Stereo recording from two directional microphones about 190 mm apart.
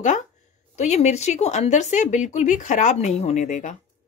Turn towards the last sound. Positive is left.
turn(degrees=40)  # may be behind; listen again after turning